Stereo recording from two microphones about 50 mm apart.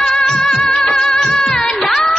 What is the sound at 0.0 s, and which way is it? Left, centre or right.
Music, centre.